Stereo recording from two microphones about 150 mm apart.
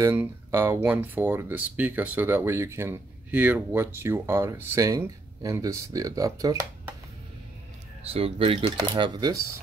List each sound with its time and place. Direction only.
0.1 s speech: 15° right (ahead or behind)
8.1 s speech: 40° right (ahead or behind)